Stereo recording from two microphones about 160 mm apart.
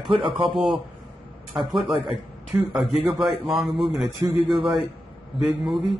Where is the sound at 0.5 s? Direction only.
Centre (ahead or behind).